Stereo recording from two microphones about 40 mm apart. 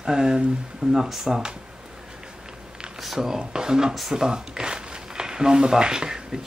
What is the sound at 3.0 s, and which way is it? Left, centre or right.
Speech, centre.